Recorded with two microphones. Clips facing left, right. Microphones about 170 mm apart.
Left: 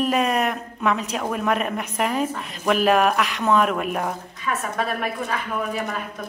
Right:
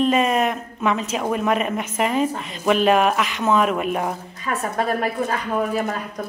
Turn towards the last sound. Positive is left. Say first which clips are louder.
# right 4 dB
turn(degrees=-35)  # may be behind; listen again after turning